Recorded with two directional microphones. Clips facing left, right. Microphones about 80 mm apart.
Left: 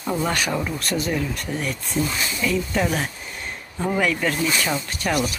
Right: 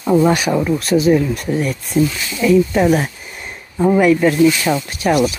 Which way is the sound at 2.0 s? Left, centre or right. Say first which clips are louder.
Right 6 dB; left.